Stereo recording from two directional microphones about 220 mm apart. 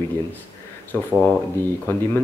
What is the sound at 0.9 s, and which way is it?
Speech, 10° left (ahead or behind).